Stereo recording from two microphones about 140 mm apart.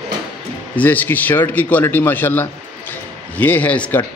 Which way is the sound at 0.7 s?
15° left (ahead or behind).